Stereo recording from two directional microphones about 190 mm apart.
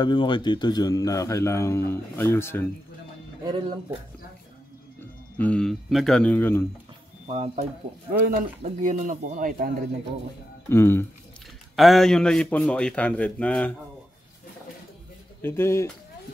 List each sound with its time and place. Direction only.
0.0 s a man's voice: 25° left (ahead or behind)
3.4 s speech: 25° right (ahead or behind)
5.4 s a man's voice: 5° left (ahead or behind)
7.2 s speech: 35° right (ahead or behind)
8.1 s speech: 45° right (ahead or behind)
10.7 s a man's voice: 10° left (ahead or behind)
11.7 s a man's voice: centre (ahead or behind)
15.4 s a man's voice: 15° left (ahead or behind)